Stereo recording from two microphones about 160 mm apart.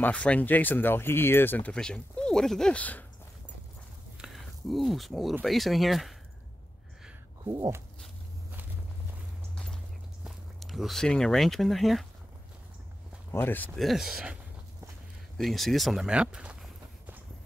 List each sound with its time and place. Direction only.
0.0 s speech: 10° left (ahead or behind)
4.2 s a sound: centre (ahead or behind)
5.4 s speech: centre (ahead or behind)
7.4 s a sound: 20° right (ahead or behind)
10.2 s speech: centre (ahead or behind)
13.3 s speech: 15° left (ahead or behind)
13.7 s speech: centre (ahead or behind)